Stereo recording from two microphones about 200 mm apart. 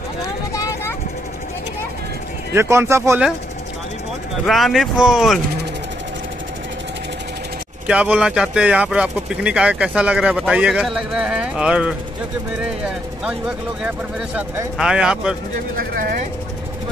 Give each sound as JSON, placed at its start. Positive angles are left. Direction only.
{"t": 0.5, "sound": "vehicle", "side_deg": 15}
{"t": 2.5, "sound": "speech", "side_deg": -10}
{"t": 4.5, "sound": "speech", "side_deg": 0}
{"t": 7.8, "sound": "speech", "side_deg": -5}
{"t": 13.8, "sound": "speech", "side_deg": -10}